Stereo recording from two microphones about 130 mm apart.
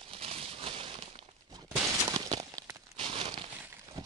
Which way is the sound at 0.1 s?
50° right (ahead or behind).